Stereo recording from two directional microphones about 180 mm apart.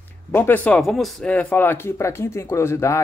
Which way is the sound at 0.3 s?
10° left (ahead or behind).